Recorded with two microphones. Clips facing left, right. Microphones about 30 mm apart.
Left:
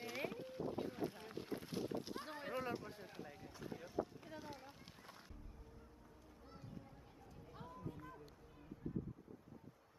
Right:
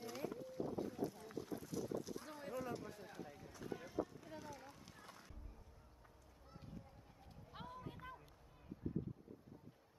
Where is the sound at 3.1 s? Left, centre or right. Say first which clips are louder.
Even; left.